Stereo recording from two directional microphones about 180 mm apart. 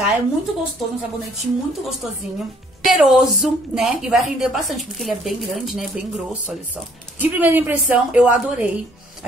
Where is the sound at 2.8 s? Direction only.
Centre (ahead or behind).